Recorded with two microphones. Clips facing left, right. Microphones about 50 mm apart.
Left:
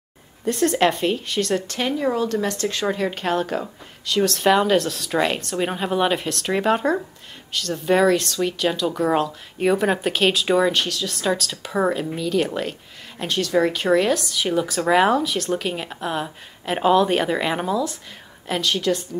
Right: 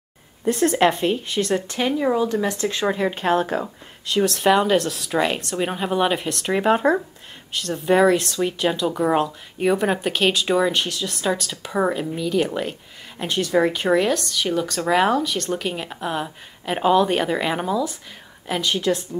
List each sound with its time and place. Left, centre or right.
0.5 s speech: centre; by 3.6 s right
3.6 s speech: centre